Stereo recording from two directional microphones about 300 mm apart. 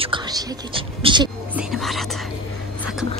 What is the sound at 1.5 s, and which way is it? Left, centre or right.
Speech, centre.